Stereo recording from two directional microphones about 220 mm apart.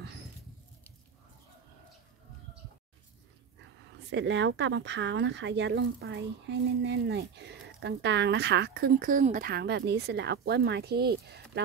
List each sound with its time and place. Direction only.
4.1 s speech: 55° right (ahead or behind)